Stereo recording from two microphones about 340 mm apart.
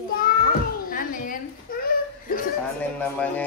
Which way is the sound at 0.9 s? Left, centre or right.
Left.